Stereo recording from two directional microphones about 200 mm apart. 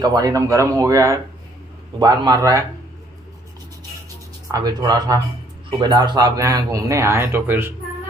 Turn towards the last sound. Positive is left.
turn(degrees=-10)  # may be behind; listen again after turning